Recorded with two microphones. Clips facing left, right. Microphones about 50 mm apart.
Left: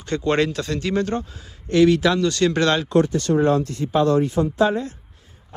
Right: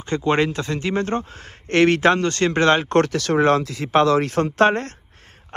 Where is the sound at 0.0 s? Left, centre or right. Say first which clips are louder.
Right 1 dB; right.